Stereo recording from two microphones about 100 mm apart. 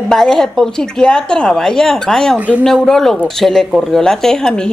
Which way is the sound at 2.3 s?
15° right (ahead or behind).